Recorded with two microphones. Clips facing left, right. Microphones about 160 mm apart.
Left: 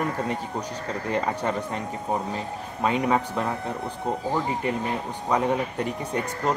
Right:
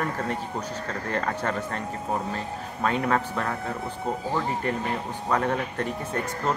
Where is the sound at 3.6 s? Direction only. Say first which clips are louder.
Left 1 dB; centre (ahead or behind).